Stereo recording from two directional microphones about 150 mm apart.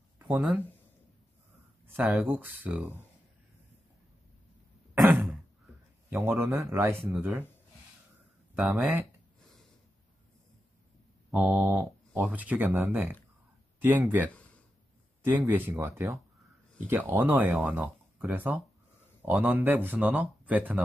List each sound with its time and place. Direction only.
0.3 s speech: centre (ahead or behind)
1.9 s speech: 15° right (ahead or behind)
4.9 s throat clearing: centre (ahead or behind)
6.0 s speech: 15° right (ahead or behind)
8.5 s speech: centre (ahead or behind)
11.3 s speech: centre (ahead or behind)